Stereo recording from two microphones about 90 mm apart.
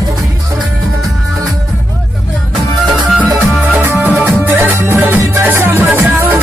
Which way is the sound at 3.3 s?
15° right (ahead or behind).